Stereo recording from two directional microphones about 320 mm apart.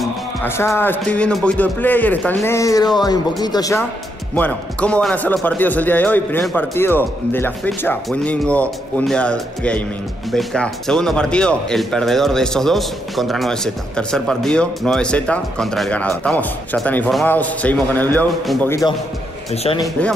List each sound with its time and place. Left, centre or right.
0.0 s speech: centre
19.5 s speech: centre
19.8 s speech: centre